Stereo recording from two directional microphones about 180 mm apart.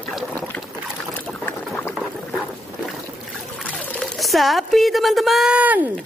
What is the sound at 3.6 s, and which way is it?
Speech, 5° left (ahead or behind).